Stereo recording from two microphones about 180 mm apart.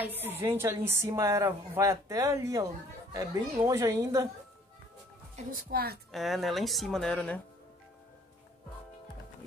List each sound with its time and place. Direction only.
0.0 s a woman's voice: 10° right (ahead or behind)
5.3 s a woman's voice: 55° right (ahead or behind)
6.1 s speech: centre (ahead or behind)